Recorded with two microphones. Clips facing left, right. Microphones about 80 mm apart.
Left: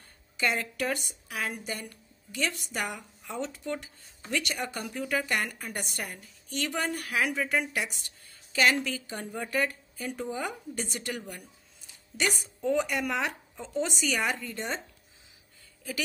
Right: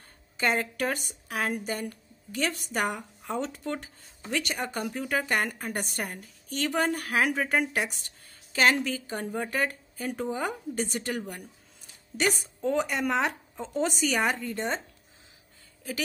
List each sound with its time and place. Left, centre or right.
0.7 s a woman's voice: right